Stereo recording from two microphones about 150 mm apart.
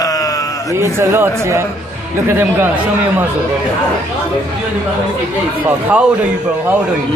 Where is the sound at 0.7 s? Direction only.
20° right (ahead or behind).